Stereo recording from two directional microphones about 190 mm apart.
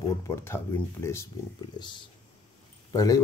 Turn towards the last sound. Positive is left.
turn(degrees=20)  # may be behind; listen again after turning